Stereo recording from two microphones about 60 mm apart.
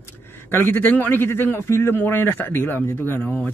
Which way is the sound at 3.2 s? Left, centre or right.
Centre.